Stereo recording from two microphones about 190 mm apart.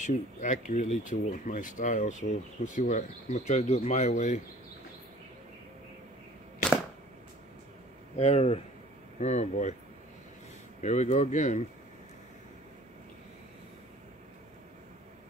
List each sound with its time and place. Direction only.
0.0 s speech: 40° left (ahead or behind)
8.2 s speech: 35° left (ahead or behind)
10.8 s speech: 40° left (ahead or behind)